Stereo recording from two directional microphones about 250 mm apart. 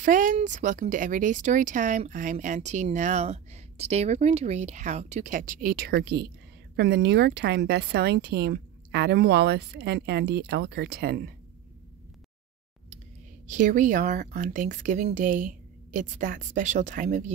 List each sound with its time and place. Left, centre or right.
0.0 s speech: right
13.5 s speech: right